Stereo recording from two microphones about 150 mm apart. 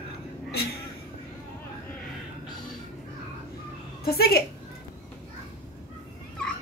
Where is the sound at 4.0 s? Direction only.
90° left.